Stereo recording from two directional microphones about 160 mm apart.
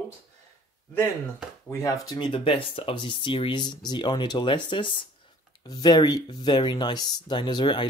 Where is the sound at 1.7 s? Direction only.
20° left (ahead or behind).